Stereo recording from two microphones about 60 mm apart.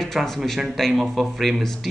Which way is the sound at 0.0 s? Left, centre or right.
Centre.